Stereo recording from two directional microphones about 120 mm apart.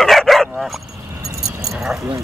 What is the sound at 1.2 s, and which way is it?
Keys jangling, 25° right (ahead or behind).